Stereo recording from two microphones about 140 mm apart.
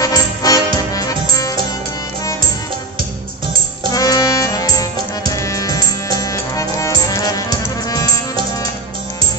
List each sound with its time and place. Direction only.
0.0 s music: 25° left (ahead or behind)
3.9 s music: 25° left (ahead or behind)